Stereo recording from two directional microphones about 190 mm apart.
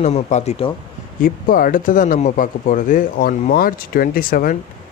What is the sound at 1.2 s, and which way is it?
Speech, 50° left (ahead or behind).